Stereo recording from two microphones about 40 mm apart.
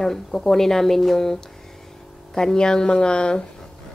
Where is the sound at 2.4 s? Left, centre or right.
Centre.